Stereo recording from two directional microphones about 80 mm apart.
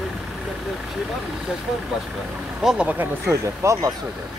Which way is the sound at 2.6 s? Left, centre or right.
Centre.